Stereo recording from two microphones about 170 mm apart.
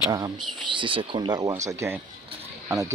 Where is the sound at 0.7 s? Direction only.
30° right (ahead or behind).